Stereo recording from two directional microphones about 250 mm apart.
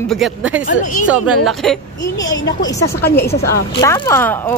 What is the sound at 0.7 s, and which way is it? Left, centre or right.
Speech, left.